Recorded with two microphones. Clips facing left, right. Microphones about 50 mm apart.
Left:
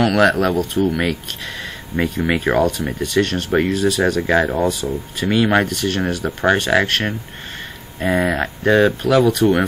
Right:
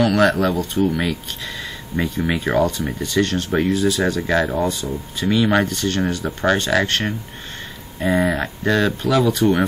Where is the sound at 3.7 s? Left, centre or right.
Left.